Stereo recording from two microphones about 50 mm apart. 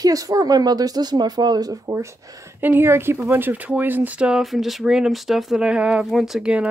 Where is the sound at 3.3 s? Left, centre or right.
Right.